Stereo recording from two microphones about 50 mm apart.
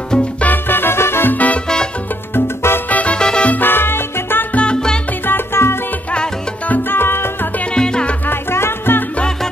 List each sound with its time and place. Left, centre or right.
0.4 s music: left
1.3 s music: left
2.3 s salsa music: left
2.9 s music: left
3.2 s salsa music: centre
3.4 s music: left
4.7 s music: centre
5.2 s music: left
7.7 s music: centre
8.3 s music: left